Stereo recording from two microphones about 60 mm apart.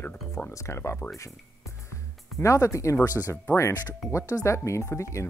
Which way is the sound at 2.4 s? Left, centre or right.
Left.